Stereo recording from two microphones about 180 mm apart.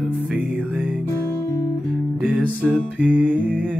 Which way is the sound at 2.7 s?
10° right (ahead or behind).